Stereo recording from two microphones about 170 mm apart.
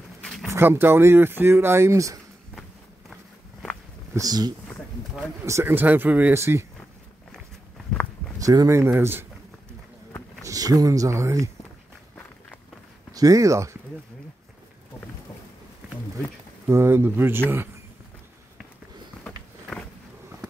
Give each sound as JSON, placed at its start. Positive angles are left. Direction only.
{"t": 0.5, "sound": "speech", "side_deg": -10}
{"t": 4.1, "sound": "speech", "side_deg": -20}
{"t": 7.3, "sound": "walk", "side_deg": 5}
{"t": 8.4, "sound": "speech", "side_deg": -20}
{"t": 10.4, "sound": "speech", "side_deg": -20}
{"t": 13.1, "sound": "speech", "side_deg": -20}
{"t": 16.6, "sound": "speech", "side_deg": -15}